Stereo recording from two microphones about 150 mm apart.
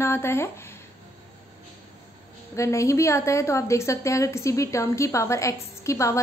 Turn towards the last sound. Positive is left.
turn(degrees=20)  # may be behind; listen again after turning